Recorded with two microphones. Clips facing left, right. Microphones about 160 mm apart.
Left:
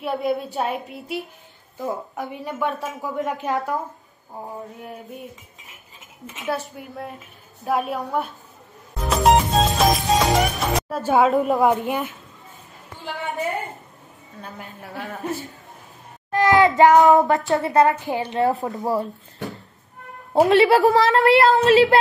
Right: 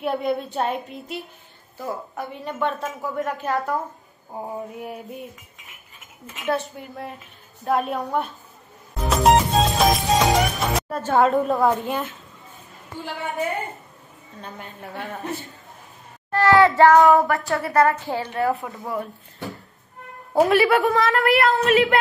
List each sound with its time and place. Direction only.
0.0 s a woman's voice: 5° left (ahead or behind)
5.9 s cutlery: 20° left (ahead or behind)
6.4 s a woman's voice: 5° left (ahead or behind)
9.0 s music: centre (ahead or behind)
11.4 s a woman's voice: 15° left (ahead or behind)
14.4 s a woman's voice: 5° left (ahead or behind)
16.3 s speech: 15° left (ahead or behind)
18.5 s speech: 40° left (ahead or behind)
20.4 s speech: 25° left (ahead or behind)